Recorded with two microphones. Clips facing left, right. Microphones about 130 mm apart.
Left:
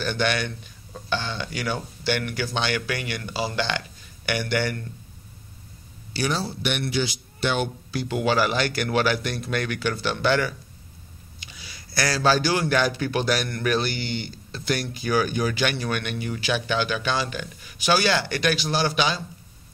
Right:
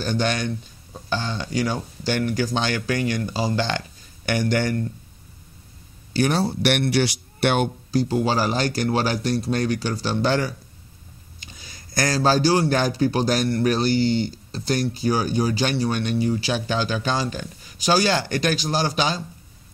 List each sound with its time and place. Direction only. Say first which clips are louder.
0.0 s a man's voice: right 1 dB; 35° right (ahead or behind)
6.1 s a man's voice: right 6 dB; 55° right (ahead or behind)
7.9 s a man's voice: right 2 dB; 35° right (ahead or behind)